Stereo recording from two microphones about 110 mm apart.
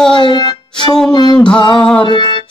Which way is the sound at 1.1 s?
40° left (ahead or behind).